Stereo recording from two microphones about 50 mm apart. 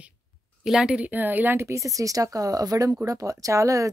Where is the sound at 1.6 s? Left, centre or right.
Right.